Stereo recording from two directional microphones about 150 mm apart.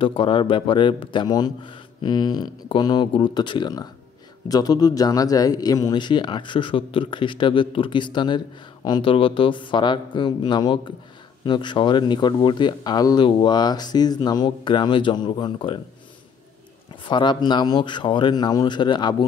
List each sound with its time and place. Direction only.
0.0 s speech: 35° left (ahead or behind)
16.9 s speech: 35° left (ahead or behind)